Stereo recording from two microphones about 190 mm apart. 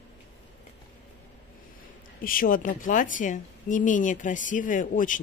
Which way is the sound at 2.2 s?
50° left (ahead or behind).